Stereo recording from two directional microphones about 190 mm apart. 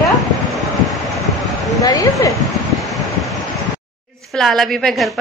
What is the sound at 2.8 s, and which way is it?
Vehicle, centre (ahead or behind).